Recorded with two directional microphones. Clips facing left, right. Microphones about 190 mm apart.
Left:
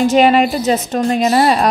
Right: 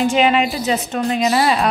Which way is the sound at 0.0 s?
40° left (ahead or behind).